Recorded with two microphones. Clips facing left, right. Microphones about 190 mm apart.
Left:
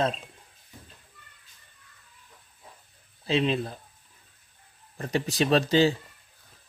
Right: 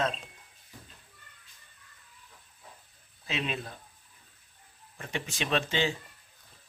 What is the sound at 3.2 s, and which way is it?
Speech, 30° left (ahead or behind).